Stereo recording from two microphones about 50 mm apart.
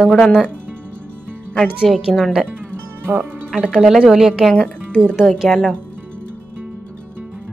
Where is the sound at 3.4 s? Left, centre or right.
Centre.